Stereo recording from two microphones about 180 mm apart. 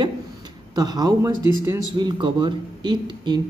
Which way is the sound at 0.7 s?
20° right (ahead or behind).